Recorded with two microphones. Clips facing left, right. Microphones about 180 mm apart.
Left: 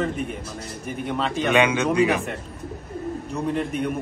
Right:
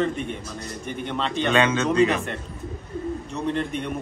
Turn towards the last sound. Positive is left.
turn(degrees=5)  # may be behind; listen again after turning